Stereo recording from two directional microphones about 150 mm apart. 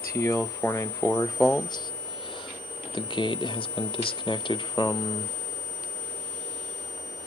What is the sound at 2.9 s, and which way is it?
Speech, 30° left (ahead or behind).